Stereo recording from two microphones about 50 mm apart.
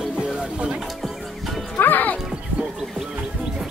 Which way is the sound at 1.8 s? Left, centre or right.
Left.